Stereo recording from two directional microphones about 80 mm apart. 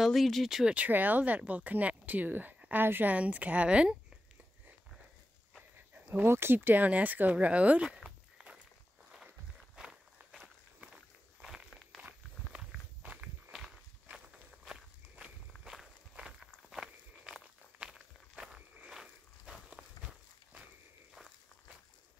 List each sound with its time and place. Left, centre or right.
0.0 s speech: centre
0.7 s speech: right
6.0 s speech: right
9.1 s walk: centre
11.9 s walk: centre
12.4 s walk: centre
13.0 s walk: centre
14.1 s walk: centre